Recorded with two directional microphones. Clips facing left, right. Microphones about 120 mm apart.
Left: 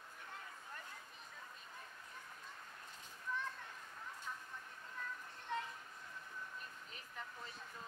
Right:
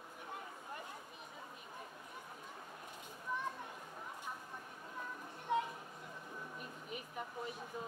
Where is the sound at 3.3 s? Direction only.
15° right (ahead or behind).